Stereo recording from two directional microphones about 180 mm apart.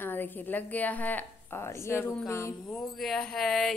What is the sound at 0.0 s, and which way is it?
A woman's voice, 10° left (ahead or behind).